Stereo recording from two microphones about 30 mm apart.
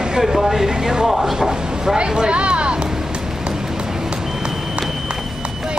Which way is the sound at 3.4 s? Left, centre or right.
Centre.